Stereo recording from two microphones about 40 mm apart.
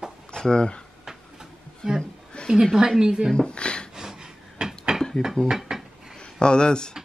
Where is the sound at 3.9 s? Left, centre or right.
Centre.